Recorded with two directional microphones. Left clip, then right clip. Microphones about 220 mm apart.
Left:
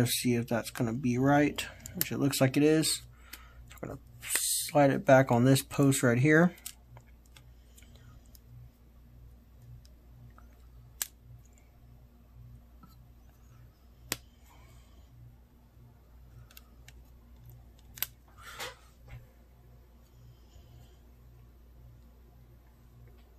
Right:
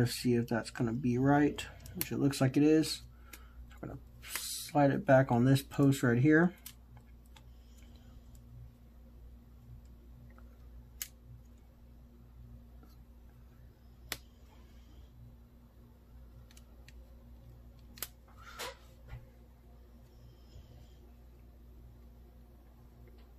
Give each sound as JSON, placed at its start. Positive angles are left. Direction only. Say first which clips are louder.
{"t": 0.0, "sound": "speech", "louder": "left 2 dB", "side_deg": 15}